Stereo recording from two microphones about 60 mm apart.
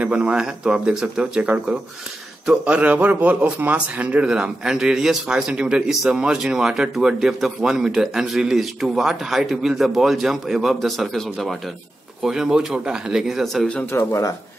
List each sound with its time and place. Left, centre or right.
0.0 s a man's voice: right
0.4 s a man's voice: centre
2.8 s a man's voice: right; by 13.7 s centre
13.9 s speech: left